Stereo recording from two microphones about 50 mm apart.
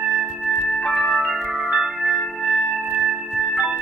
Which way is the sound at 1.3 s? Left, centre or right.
Centre.